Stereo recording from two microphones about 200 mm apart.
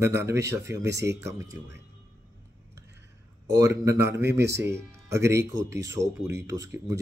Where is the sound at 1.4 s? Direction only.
65° right (ahead or behind).